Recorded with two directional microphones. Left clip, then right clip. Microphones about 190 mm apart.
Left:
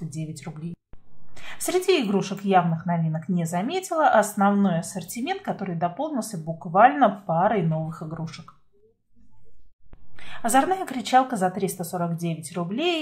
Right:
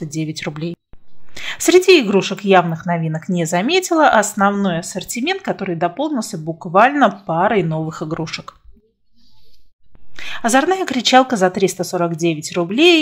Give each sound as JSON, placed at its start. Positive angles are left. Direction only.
{"t": 0.1, "sound": "a woman's voice", "side_deg": -35}
{"t": 10.1, "sound": "a woman's voice", "side_deg": -35}